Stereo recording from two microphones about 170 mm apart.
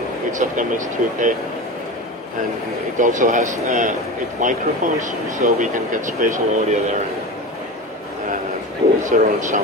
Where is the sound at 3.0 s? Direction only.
50° right (ahead or behind).